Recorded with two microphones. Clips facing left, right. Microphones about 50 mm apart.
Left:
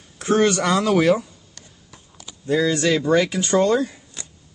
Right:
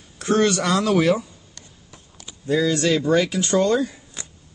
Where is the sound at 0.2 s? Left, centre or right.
Centre.